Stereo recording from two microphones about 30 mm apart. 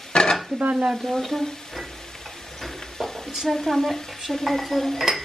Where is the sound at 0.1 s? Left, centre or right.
Left.